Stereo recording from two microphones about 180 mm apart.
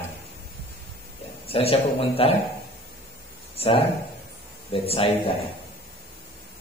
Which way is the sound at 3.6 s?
30° left (ahead or behind).